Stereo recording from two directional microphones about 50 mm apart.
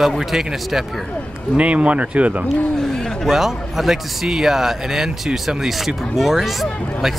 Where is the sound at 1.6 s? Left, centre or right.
Right.